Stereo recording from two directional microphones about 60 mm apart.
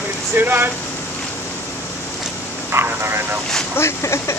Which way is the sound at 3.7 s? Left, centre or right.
Left.